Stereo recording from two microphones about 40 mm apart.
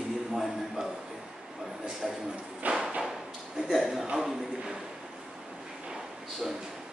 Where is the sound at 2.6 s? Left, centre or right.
Right.